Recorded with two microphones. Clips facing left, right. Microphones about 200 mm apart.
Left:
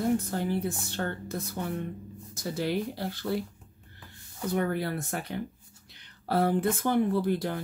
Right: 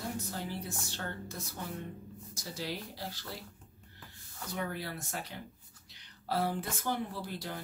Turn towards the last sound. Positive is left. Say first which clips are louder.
# left 13 dB
turn(degrees=60)  # may be behind; listen again after turning